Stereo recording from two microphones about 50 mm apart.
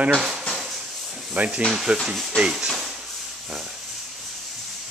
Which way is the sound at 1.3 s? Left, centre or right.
Centre.